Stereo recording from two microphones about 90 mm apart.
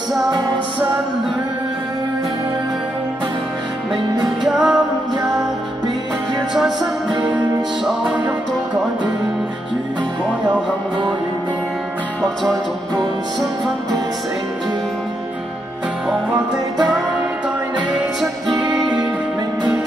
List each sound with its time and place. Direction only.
4.5 s music: 5° right (ahead or behind)
6.5 s music: 5° right (ahead or behind)
18.5 s music: 55° right (ahead or behind)